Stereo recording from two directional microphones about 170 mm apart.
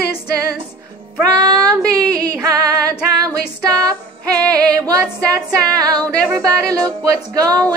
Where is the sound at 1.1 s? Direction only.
20° right (ahead or behind).